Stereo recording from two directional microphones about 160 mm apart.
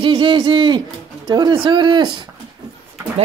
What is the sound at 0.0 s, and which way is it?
Speech, 30° right (ahead or behind).